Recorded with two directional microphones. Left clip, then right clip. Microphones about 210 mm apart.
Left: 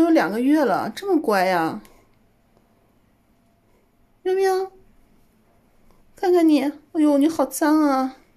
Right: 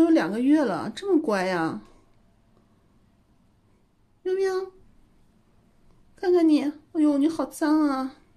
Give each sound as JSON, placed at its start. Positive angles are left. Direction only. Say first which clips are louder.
{"t": 0.0, "sound": "speech", "louder": "left 3 dB", "side_deg": 5}
{"t": 4.2, "sound": "speech", "louder": "left 5 dB", "side_deg": 10}
{"t": 6.1, "sound": "speech", "louder": "left 3 dB", "side_deg": 10}